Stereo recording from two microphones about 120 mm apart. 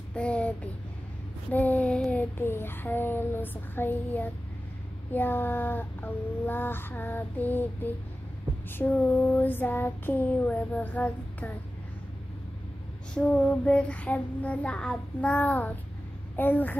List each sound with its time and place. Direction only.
0.1 s a sound: 10° left (ahead or behind)
1.5 s child singing: 15° left (ahead or behind)
13.1 s child singing: 10° left (ahead or behind)